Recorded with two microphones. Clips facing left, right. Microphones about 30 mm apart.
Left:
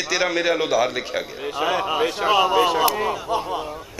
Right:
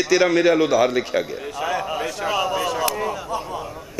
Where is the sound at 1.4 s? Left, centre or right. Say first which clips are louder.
Left 2 dB; left.